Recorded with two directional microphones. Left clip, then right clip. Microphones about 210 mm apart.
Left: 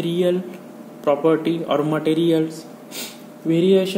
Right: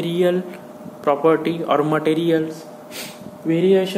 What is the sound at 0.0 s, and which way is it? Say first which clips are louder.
Speech: right 1 dB; 5° left (ahead or behind).